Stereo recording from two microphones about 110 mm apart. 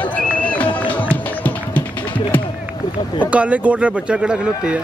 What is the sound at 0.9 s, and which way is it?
Music, 15° left (ahead or behind).